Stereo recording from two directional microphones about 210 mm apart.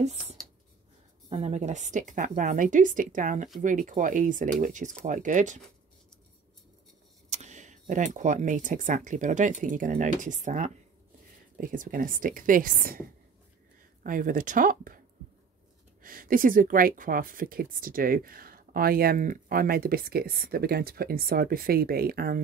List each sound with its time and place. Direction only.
1.3 s speech: 30° right (ahead or behind)
7.2 s speech: 35° right (ahead or behind)
14.0 s speech: 40° right (ahead or behind)
16.0 s speech: 40° right (ahead or behind)